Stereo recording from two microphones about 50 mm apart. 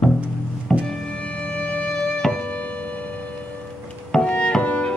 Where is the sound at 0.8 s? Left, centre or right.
Left.